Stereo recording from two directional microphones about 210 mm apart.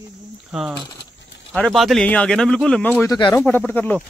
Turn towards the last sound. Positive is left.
turn(degrees=10)  # may be behind; listen again after turning